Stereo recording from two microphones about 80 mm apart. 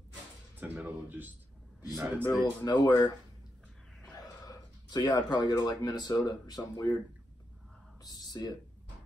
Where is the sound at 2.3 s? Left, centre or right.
Left.